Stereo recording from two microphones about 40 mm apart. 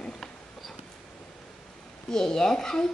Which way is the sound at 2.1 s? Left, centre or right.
Centre.